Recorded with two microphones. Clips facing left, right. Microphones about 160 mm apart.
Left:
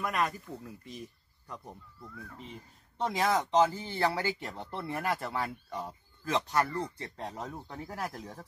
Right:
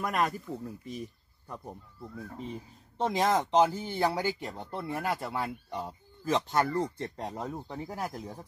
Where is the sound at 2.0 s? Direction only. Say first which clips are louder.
Right 5 dB; 35° right (ahead or behind).